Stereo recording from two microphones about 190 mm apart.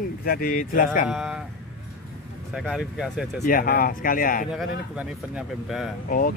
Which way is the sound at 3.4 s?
50° left (ahead or behind).